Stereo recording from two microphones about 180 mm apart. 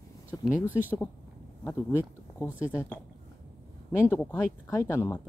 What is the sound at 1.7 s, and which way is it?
Speech, 10° left (ahead or behind).